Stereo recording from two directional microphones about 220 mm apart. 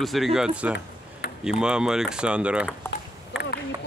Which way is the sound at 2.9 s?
10° left (ahead or behind).